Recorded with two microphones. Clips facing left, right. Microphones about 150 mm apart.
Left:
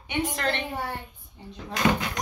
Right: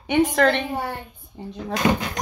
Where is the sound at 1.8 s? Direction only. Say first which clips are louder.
Right 3 dB; 20° right (ahead or behind).